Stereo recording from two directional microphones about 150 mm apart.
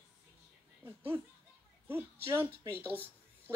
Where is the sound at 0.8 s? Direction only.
15° right (ahead or behind).